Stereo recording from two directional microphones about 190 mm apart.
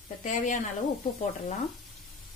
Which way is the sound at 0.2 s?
40° left (ahead or behind).